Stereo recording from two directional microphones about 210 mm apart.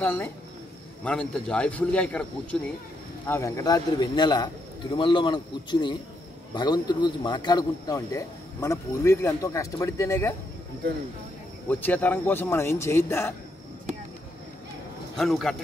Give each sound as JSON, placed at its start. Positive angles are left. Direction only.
{"t": 0.0, "sound": "a man's voice", "side_deg": 10}
{"t": 11.7, "sound": "a man's voice", "side_deg": 10}
{"t": 15.1, "sound": "a man's voice", "side_deg": 0}